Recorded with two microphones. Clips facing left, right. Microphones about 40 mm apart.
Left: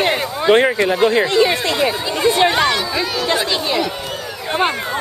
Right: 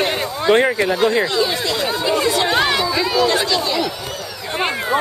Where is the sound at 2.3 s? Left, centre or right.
Left.